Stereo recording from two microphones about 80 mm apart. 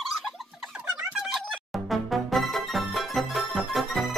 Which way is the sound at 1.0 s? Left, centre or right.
Centre.